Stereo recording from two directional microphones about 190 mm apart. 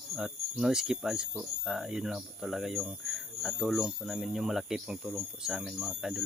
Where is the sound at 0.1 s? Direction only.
Centre (ahead or behind).